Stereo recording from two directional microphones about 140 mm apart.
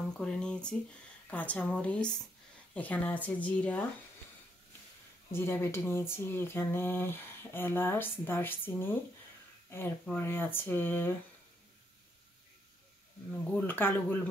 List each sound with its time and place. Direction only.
0.2 s speech: 5° left (ahead or behind)
5.3 s speech: 15° left (ahead or behind)
10.1 s speech: 15° left (ahead or behind)
13.3 s speech: 15° left (ahead or behind)